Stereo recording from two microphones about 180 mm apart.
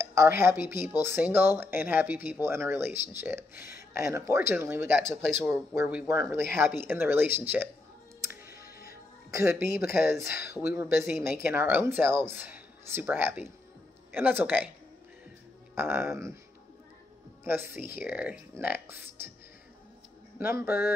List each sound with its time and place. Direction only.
0.0 s a woman's voice: 15° right (ahead or behind)
8.2 s music: 15° right (ahead or behind)
8.6 s music: 55° left (ahead or behind)
9.3 s speech: 15° right (ahead or behind)
15.7 s speech: 15° right (ahead or behind)
17.5 s speech: 10° right (ahead or behind)
20.3 s speech: 10° right (ahead or behind)